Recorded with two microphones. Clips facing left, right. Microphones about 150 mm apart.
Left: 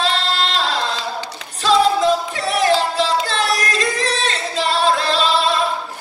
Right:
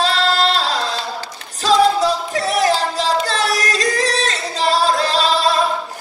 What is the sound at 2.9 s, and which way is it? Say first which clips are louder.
Singing: even; 40° right (ahead or behind).